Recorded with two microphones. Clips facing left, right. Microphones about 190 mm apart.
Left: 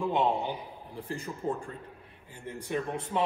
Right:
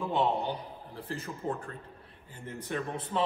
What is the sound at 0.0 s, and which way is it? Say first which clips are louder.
A man's voice: left 1 dB; 15° left (ahead or behind).